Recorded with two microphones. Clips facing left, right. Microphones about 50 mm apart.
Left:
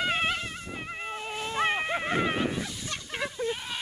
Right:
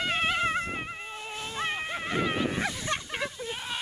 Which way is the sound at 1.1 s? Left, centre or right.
Centre.